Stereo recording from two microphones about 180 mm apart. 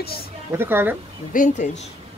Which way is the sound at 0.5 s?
15° right (ahead or behind).